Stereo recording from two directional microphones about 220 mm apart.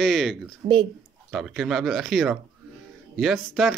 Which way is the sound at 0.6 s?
35° right (ahead or behind).